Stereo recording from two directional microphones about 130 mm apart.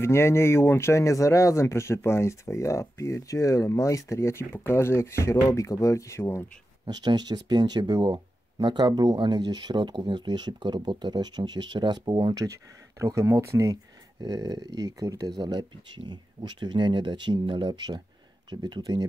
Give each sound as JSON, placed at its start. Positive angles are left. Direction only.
{"t": 0.0, "sound": "speech", "side_deg": 20}
{"t": 6.9, "sound": "speech", "side_deg": -30}